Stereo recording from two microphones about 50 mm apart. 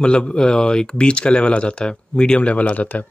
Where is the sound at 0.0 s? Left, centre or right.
Left.